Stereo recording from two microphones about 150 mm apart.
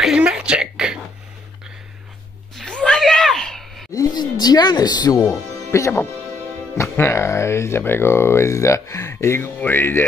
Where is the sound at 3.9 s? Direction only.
25° left (ahead or behind).